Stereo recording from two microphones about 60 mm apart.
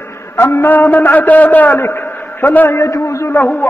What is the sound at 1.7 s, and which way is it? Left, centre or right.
A man's voice, left.